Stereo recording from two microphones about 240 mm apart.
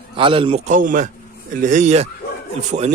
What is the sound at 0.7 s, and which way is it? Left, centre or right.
A man's voice, right.